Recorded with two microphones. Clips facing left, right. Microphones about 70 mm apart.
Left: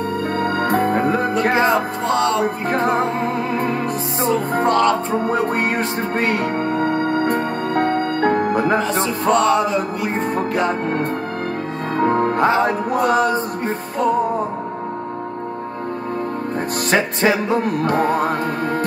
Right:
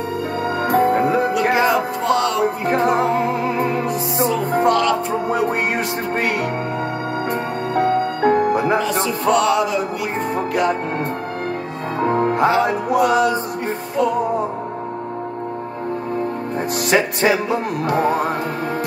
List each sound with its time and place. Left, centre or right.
0.4 s music: left
12.0 s music: left
16.9 s music: left
17.6 s music: left